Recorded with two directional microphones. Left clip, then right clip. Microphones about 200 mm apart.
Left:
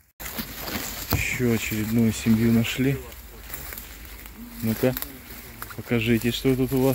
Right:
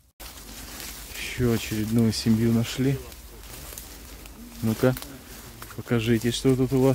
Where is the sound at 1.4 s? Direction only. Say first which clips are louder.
Left 1 dB; 15° right (ahead or behind).